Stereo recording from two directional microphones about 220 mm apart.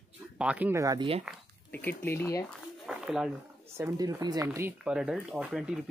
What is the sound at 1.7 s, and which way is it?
Speech, 10° left (ahead or behind).